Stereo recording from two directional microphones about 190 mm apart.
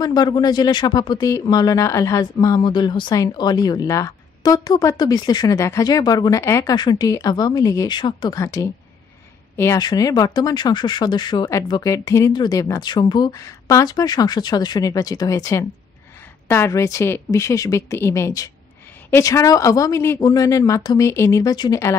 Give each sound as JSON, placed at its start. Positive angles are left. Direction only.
{"t": 0.0, "sound": "speech", "side_deg": 20}
{"t": 9.6, "sound": "speech", "side_deg": 20}